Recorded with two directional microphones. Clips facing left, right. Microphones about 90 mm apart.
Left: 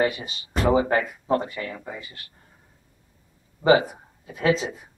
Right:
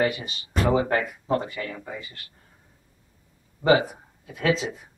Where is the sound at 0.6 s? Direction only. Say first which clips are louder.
Left 2 dB; 10° left (ahead or behind).